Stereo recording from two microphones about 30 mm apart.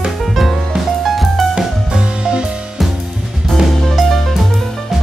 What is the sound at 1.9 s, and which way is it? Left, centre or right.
Music, right.